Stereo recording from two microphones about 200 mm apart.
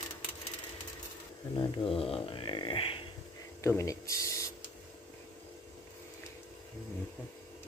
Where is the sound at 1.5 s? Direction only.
25° left (ahead or behind).